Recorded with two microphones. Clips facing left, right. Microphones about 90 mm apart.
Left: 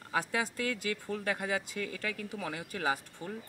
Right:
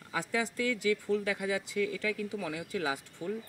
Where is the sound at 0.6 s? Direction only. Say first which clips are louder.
Right 5 dB; 50° left (ahead or behind).